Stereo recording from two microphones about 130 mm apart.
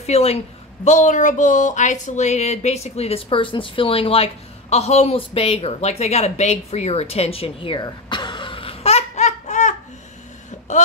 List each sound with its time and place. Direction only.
0.0 s a woman's voice: 50° left (ahead or behind)
0.8 s speech: 70° left (ahead or behind)